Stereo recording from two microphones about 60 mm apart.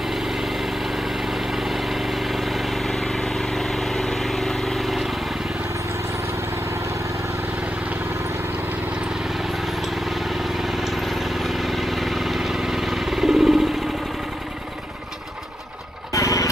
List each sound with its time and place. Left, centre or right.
0.1 s vehicle: centre
9.8 s vehicle: centre
16.1 s vehicle: left